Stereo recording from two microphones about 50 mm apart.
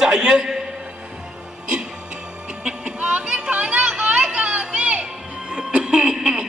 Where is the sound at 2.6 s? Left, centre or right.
Right.